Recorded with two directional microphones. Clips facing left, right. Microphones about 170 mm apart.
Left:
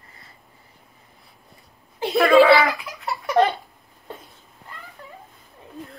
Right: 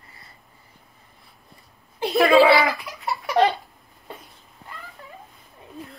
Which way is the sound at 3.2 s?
15° right (ahead or behind).